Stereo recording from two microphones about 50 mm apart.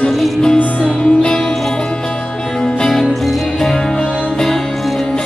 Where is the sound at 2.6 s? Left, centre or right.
Centre.